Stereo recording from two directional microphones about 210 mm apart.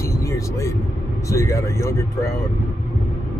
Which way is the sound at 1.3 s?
15° left (ahead or behind).